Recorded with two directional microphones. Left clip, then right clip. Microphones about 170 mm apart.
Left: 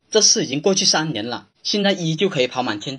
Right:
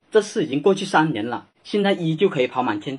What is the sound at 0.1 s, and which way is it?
Speech, 30° left (ahead or behind).